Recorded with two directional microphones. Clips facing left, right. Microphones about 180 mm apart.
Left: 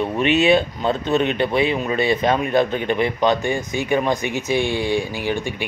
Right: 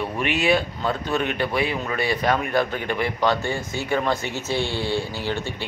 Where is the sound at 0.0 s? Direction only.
20° left (ahead or behind).